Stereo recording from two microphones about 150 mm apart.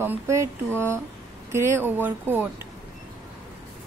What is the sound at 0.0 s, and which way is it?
Speech, 15° right (ahead or behind).